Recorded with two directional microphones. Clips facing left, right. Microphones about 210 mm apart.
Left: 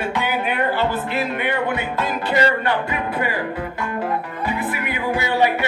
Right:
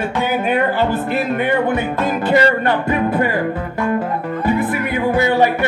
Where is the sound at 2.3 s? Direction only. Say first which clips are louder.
Right 4 dB; 45° right (ahead or behind).